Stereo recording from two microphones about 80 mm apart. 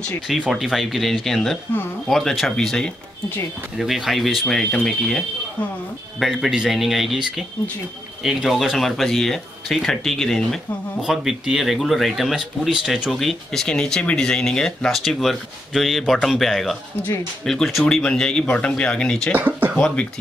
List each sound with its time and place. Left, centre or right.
0.5 s speech: centre
11.0 s speech: centre
19.3 s a sound: right